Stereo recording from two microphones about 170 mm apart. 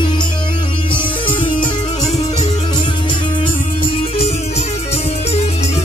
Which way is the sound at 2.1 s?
40° left (ahead or behind).